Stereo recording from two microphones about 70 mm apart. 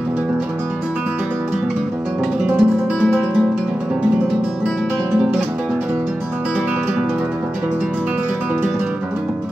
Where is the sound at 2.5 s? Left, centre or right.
Centre.